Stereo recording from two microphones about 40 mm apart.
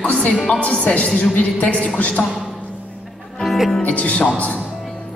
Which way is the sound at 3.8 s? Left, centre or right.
Left.